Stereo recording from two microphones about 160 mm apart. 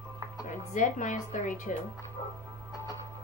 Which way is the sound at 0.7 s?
50° left (ahead or behind).